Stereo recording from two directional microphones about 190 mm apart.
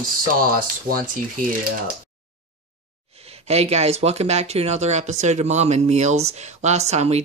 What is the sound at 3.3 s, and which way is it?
Speech, 35° right (ahead or behind).